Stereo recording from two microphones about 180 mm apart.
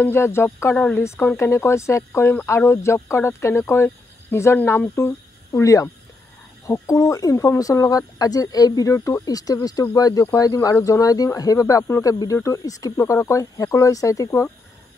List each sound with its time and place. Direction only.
0.0 s speech: 15° left (ahead or behind)